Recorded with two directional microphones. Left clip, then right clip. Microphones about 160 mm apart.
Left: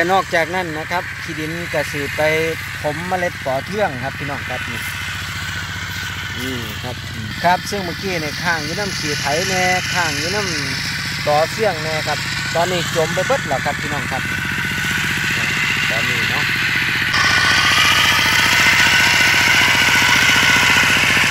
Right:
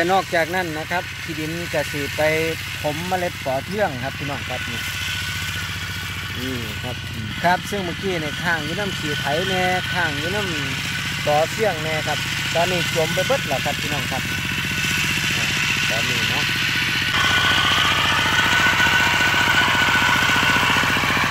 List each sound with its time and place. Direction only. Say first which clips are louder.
0.0 s speech: left 3 dB; 5° left (ahead or behind)
7.4 s speech: left 3 dB; 5° left (ahead or behind)
9.1 s speech: left 3 dB; 20° left (ahead or behind)
9.5 s speech: left 4 dB; centre (ahead or behind)
10.0 s speech: left 3 dB; 20° left (ahead or behind)
11.2 s speech: left 3 dB; centre (ahead or behind)
13.3 s speech: left 3 dB; 5° right (ahead or behind)
14.6 s motorcycle: left 1 dB; 80° right
17.1 s jackhammer: left 4 dB; 5° right (ahead or behind); by 21.3 s 20° left (ahead or behind)